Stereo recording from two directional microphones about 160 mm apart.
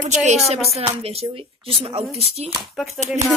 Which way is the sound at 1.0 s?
40° right (ahead or behind).